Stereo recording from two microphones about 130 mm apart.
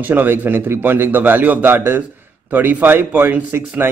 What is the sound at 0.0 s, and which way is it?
Speech, 15° right (ahead or behind).